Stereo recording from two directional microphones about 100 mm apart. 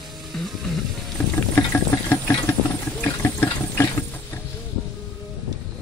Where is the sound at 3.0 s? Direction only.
25° left (ahead or behind).